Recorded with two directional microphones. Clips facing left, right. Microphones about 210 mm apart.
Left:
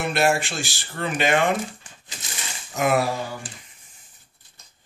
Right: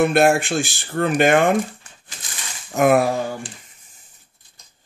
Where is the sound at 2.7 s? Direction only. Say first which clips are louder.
Right 6 dB; 55° right (ahead or behind).